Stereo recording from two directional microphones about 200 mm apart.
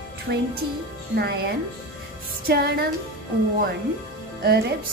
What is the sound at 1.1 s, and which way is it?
Speech, 55° right (ahead or behind).